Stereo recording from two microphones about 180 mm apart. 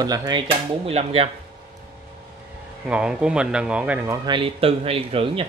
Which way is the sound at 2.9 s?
5° right (ahead or behind).